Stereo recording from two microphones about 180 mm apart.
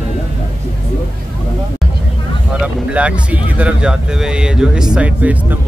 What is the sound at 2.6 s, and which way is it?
Speech, 5° right (ahead or behind).